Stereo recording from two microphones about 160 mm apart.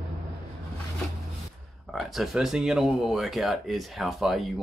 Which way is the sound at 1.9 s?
Centre (ahead or behind).